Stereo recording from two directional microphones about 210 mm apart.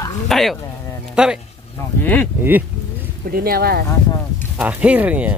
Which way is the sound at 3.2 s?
45° right (ahead or behind).